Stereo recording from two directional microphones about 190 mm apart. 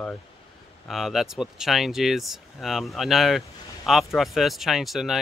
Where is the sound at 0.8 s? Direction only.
Centre (ahead or behind).